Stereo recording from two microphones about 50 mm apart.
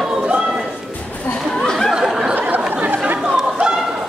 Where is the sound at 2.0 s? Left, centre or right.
Centre.